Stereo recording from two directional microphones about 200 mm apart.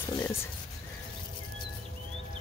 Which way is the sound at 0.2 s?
10° left (ahead or behind).